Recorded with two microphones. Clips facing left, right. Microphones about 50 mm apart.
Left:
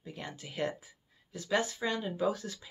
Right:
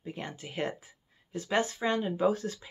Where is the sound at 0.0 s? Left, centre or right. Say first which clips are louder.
Right 4 dB; right.